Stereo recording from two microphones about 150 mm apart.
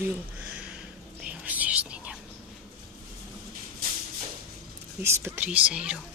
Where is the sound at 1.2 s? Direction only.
10° right (ahead or behind).